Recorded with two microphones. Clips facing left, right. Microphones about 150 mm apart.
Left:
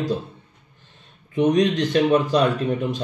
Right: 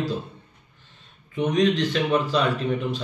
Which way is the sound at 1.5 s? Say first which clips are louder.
Left 1 dB; 45° left (ahead or behind).